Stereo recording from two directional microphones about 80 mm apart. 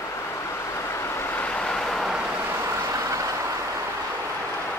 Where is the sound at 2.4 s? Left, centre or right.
Right.